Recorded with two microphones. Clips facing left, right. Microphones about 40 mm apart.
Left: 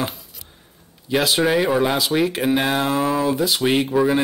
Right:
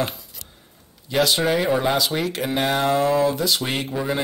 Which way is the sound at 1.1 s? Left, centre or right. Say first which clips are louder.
Left 2 dB; centre.